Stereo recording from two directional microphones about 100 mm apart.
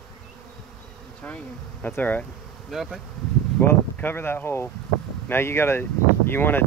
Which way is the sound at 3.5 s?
20° left (ahead or behind).